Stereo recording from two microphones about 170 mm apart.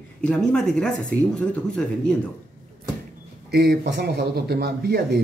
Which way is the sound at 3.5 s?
75° right (ahead or behind).